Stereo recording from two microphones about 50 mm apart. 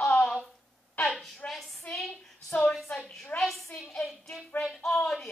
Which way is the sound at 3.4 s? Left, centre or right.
Centre.